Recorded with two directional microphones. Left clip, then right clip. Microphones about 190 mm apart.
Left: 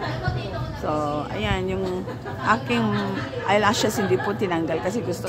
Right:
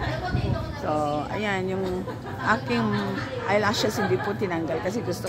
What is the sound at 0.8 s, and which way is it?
Speech, centre (ahead or behind).